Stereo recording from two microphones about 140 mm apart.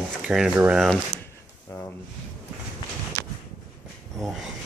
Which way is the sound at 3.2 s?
20° left (ahead or behind).